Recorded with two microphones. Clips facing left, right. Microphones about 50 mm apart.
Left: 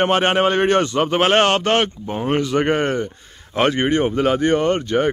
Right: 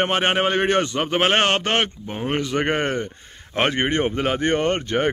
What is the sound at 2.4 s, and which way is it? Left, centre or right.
A man's voice, centre.